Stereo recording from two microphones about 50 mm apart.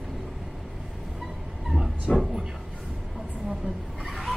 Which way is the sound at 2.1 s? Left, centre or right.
Left.